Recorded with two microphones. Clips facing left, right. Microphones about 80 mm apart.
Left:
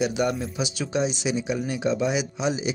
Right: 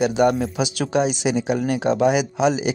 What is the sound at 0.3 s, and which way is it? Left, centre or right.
Speech, right.